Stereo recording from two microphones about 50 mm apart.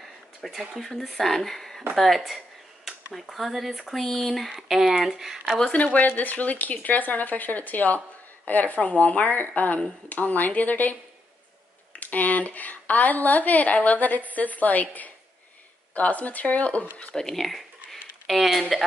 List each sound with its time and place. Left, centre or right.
0.4 s speech: centre
4.6 s speech: centre
5.9 s speech: left
17.1 s speech: centre